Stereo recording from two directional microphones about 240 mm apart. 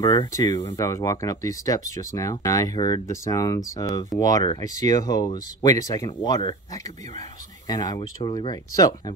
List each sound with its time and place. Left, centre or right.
0.0 s speech: centre